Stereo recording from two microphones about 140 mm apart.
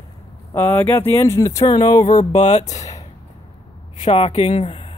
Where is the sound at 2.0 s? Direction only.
60° left (ahead or behind).